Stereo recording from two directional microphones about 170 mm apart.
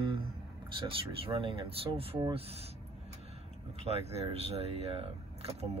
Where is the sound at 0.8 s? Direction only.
35° right (ahead or behind).